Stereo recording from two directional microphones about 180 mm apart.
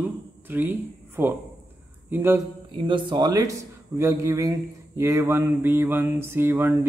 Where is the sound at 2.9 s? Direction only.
25° right (ahead or behind).